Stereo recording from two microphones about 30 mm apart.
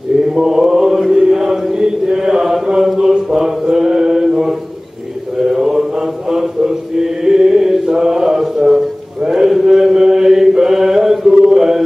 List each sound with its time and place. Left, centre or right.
0.3 s mantra: centre
1.1 s chant: centre
2.1 s chant: centre
3.0 s mantra: centre